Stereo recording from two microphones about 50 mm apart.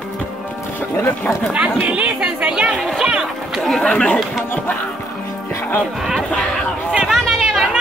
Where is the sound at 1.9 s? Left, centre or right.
Right.